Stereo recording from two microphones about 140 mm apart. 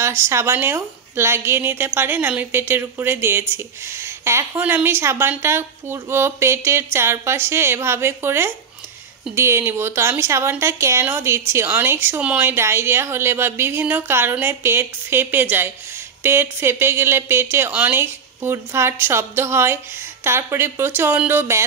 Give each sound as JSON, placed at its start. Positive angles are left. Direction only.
{"t": 0.0, "sound": "a woman's voice", "side_deg": -20}